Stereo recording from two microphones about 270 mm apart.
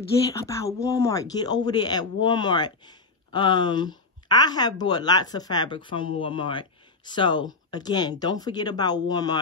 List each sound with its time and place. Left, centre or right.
0.3 s speech: centre